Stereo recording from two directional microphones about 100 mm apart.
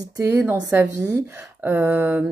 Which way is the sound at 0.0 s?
35° right (ahead or behind).